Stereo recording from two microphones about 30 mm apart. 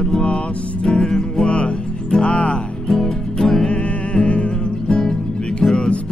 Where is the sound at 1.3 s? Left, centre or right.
Left.